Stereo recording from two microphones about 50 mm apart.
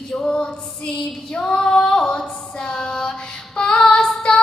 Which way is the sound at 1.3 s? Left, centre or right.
Centre.